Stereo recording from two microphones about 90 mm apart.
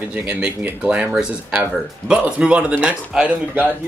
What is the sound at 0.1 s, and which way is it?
Speech, 15° right (ahead or behind).